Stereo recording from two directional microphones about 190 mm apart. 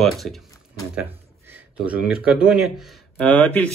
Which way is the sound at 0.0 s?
Centre (ahead or behind).